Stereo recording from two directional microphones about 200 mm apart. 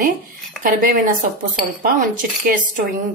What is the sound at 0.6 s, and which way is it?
A woman's voice, 45° right (ahead or behind).